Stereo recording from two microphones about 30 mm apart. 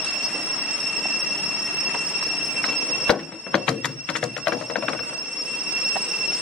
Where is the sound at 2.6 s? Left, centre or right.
Left.